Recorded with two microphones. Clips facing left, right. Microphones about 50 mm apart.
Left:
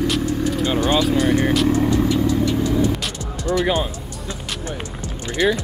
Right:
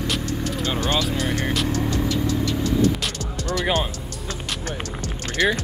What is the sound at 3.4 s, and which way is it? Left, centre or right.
Music, centre.